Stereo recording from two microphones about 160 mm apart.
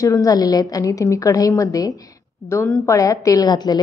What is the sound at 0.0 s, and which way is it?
A woman's voice, 20° left (ahead or behind).